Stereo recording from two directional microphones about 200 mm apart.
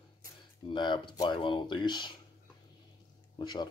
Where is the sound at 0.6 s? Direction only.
25° left (ahead or behind).